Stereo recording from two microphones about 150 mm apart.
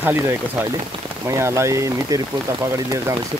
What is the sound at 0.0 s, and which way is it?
Speech, 15° right (ahead or behind).